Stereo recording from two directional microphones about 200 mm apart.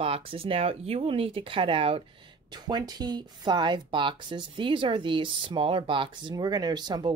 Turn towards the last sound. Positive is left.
turn(degrees=-20)  # may be behind; listen again after turning